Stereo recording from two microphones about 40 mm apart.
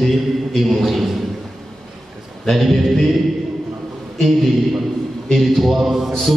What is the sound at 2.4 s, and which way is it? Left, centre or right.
Speech, centre.